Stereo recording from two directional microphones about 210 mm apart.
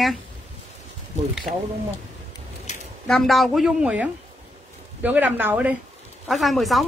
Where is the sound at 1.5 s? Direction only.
30° right (ahead or behind).